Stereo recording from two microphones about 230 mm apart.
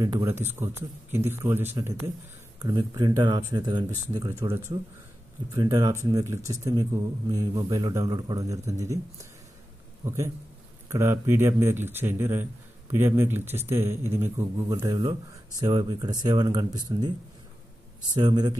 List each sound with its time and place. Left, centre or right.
0.0 s speech: centre
18.1 s speech: centre